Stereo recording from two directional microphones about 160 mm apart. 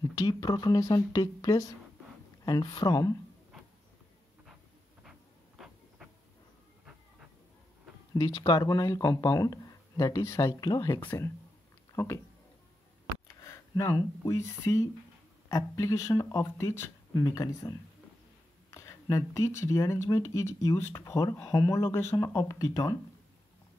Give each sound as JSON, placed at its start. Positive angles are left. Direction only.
{"t": 0.0, "sound": "speech", "side_deg": 20}
{"t": 8.1, "sound": "speech", "side_deg": 20}
{"t": 11.9, "sound": "a sound", "side_deg": 15}
{"t": 13.4, "sound": "speech", "side_deg": 20}